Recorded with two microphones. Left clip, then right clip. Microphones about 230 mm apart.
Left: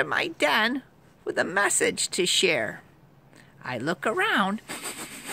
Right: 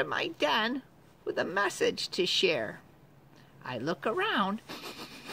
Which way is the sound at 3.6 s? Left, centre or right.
Left.